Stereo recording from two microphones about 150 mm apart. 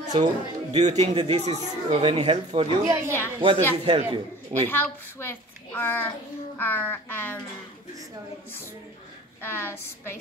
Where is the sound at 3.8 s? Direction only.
35° right (ahead or behind).